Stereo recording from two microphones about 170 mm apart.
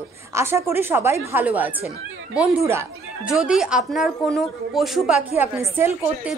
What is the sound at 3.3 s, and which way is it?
A woman's voice, 5° right (ahead or behind).